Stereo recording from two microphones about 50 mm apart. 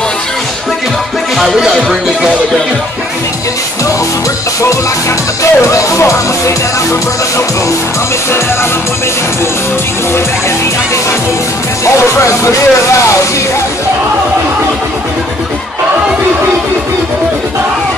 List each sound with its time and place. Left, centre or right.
5.4 s music: left
11.8 s speech: left